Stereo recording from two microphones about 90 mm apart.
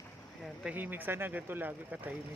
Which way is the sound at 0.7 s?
20° right (ahead or behind).